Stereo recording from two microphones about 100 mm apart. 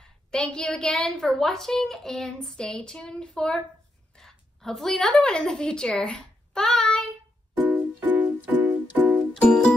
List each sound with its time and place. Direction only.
0.0 s a woman's voice: 5° left (ahead or behind)
7.6 s music: 15° right (ahead or behind)
9.3 s music: 10° left (ahead or behind)